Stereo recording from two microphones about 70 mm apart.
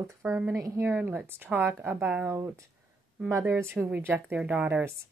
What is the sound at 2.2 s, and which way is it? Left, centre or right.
A woman's voice, right.